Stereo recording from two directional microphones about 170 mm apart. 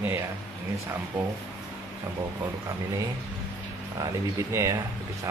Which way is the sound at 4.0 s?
20° right (ahead or behind).